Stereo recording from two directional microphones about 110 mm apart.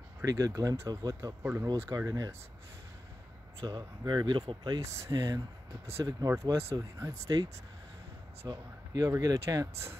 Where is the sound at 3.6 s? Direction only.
35° right (ahead or behind).